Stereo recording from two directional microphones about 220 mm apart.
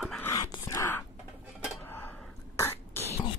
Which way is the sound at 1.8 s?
10° left (ahead or behind).